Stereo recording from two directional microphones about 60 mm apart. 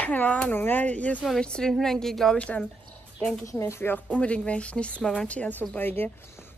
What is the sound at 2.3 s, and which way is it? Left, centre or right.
Speech, left.